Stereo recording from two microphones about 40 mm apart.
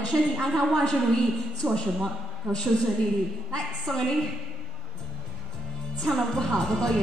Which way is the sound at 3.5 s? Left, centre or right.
Centre.